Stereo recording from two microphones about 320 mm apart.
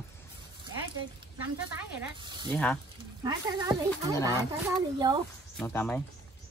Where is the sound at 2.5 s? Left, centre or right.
Centre.